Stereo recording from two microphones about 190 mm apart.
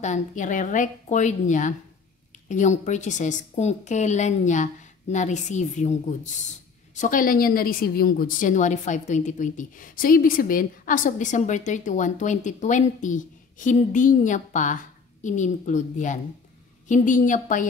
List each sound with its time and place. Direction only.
0.0 s a woman's voice: 40° left (ahead or behind)